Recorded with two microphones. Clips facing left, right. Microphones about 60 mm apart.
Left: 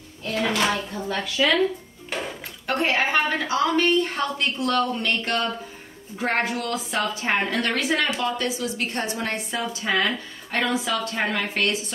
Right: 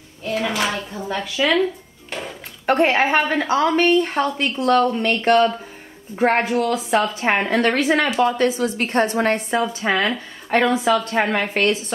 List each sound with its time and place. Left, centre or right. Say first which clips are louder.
0.2 s speech: right 1 dB; centre
2.0 s a sound: even; centre
2.6 s a woman's voice: right 6 dB; right